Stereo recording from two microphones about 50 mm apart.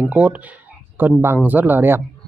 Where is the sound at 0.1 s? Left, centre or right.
Right.